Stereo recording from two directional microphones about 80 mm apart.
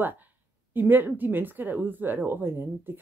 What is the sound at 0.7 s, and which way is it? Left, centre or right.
Speech, right.